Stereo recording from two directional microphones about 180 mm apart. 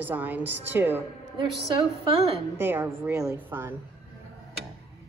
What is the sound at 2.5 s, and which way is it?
Speech, 10° right (ahead or behind).